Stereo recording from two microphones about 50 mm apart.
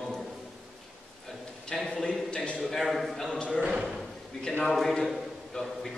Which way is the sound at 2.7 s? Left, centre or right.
Centre.